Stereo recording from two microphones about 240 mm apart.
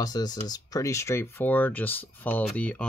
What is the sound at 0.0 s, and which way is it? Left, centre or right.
Speech, centre.